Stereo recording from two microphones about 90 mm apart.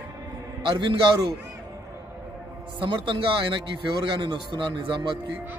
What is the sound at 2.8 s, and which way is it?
A man's voice, 65° right (ahead or behind).